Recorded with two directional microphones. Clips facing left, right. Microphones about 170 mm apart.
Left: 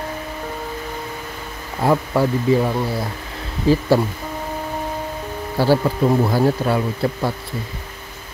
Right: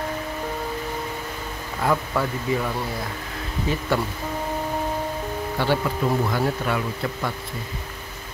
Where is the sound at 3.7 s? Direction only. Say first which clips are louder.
Left 9 dB; 35° left (ahead or behind).